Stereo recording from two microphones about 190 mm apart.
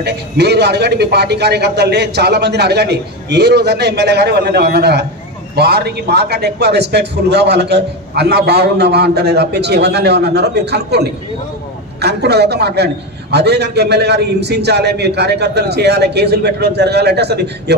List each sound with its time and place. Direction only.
0.0 s a man's voice: 60° right (ahead or behind)